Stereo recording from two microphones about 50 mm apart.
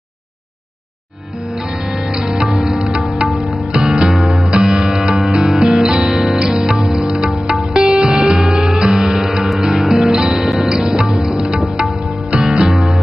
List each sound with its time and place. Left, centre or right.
1.9 s music: centre
3.7 s music: centre
4.0 s music: centre
5.6 s music: centre
7.5 s music: centre